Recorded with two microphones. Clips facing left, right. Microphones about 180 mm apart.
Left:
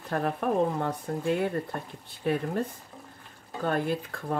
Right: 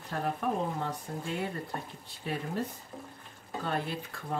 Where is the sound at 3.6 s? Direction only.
50° left (ahead or behind).